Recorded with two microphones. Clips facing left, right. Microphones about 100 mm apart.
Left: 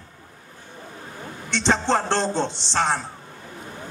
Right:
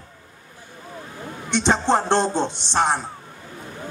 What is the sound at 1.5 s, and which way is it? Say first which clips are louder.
A man's voice: right 2 dB; 15° right (ahead or behind).